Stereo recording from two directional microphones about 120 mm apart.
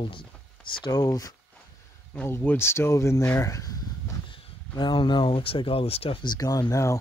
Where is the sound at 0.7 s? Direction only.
30° left (ahead or behind).